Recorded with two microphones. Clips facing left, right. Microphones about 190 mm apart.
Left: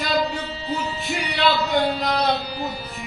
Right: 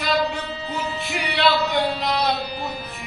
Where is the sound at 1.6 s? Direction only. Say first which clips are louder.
Left 1 dB; 35° left (ahead or behind).